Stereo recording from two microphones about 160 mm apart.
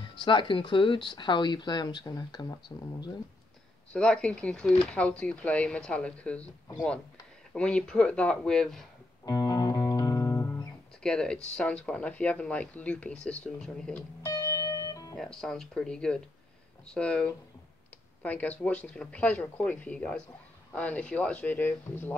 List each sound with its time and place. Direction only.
0.2 s speech: 30° left (ahead or behind)
3.9 s speech: 5° left (ahead or behind)
7.5 s speech: 5° left (ahead or behind)
9.2 s music: 25° left (ahead or behind)
11.0 s speech: 5° left (ahead or behind)
14.2 s music: 20° left (ahead or behind)
15.1 s speech: 5° left (ahead or behind)